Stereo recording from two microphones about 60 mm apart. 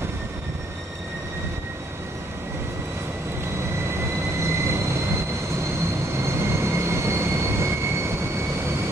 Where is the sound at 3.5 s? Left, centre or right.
Right.